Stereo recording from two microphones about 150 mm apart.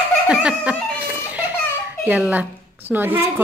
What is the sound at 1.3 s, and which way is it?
A child's voice, 10° right (ahead or behind).